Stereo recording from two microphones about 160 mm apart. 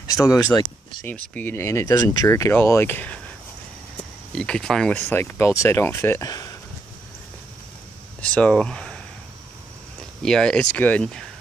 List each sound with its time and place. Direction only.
0.0 s speech: 20° left (ahead or behind)
4.4 s speech: 5° left (ahead or behind); by 6.5 s 20° left (ahead or behind)
8.2 s speech: 5° left (ahead or behind)
10.2 s speech: 5° left (ahead or behind)